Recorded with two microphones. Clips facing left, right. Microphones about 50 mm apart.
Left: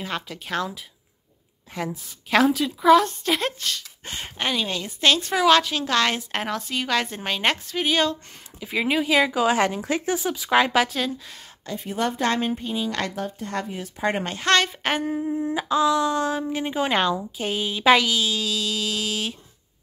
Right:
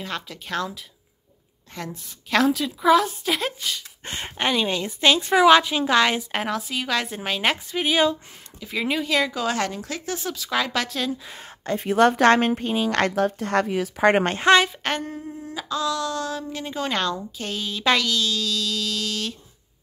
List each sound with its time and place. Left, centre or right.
0.0 s a woman's voice: centre
4.0 s speech: right
4.5 s a woman's voice: centre
8.5 s a sound: centre
10.8 s a woman's voice: centre
11.8 s a woman's voice: right
14.4 s a woman's voice: centre
14.7 s a sound: centre